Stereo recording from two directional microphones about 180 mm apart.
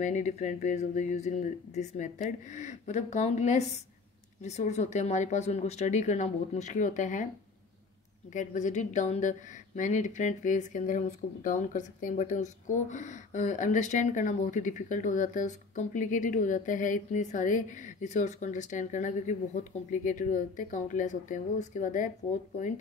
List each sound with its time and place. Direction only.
0.0 s speech: 40° left (ahead or behind)
8.3 s a woman's voice: 45° left (ahead or behind)